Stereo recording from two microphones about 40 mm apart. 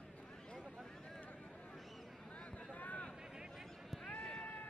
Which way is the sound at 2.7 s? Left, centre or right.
Left.